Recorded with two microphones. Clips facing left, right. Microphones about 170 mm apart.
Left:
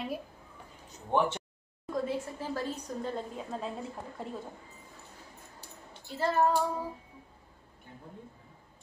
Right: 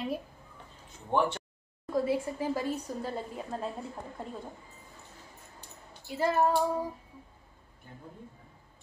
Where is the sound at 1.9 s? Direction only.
10° right (ahead or behind).